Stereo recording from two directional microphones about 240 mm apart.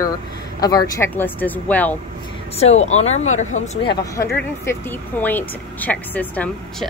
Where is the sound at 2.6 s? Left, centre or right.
Left.